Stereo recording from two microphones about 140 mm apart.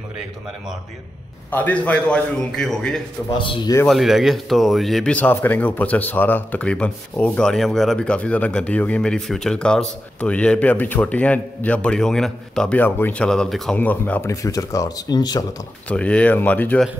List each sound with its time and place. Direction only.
1.5 s speech: 10° left (ahead or behind)
3.8 s speech: centre (ahead or behind)
14.3 s speech: 25° left (ahead or behind)
15.9 s speech: 10° left (ahead or behind)